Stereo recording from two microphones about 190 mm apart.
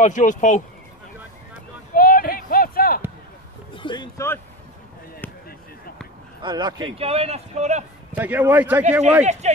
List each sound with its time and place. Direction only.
0.0 s speech: 40° left (ahead or behind)
2.0 s a sound: 50° left (ahead or behind)
3.7 s speech: 25° left (ahead or behind)
6.4 s a man's voice: 25° right (ahead or behind)
8.1 s a man's voice: 10° right (ahead or behind)
9.2 s a man's voice: 35° right (ahead or behind)